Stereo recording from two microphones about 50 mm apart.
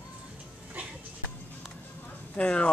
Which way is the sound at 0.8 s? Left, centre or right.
Right.